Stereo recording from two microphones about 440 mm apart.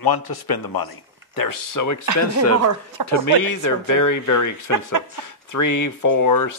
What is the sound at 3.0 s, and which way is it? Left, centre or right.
Speech, right.